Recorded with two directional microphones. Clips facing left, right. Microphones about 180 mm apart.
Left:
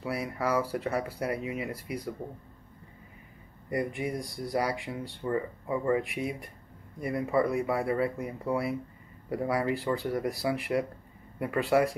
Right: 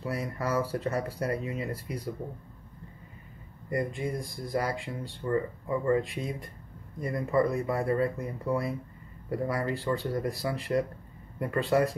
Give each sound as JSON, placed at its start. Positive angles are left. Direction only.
{"t": 0.0, "sound": "speech", "side_deg": 10}
{"t": 3.7, "sound": "speech", "side_deg": 15}